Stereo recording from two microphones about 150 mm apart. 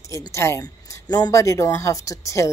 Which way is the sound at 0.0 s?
20° left (ahead or behind).